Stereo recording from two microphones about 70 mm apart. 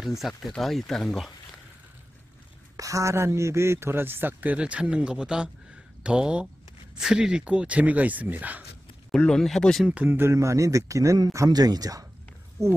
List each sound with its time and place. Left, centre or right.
0.0 s speech: centre
2.8 s a man's voice: right
9.1 s speech: centre
10.0 s a man's voice: right
10.3 s a man's voice: right
11.3 s speech: right